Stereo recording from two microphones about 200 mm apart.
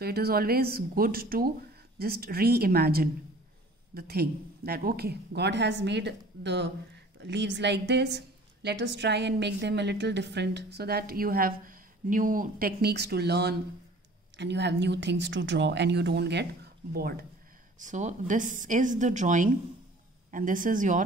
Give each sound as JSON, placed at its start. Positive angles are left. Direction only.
{"t": 0.0, "sound": "a woman's voice", "side_deg": -50}
{"t": 17.7, "sound": "a woman's voice", "side_deg": -40}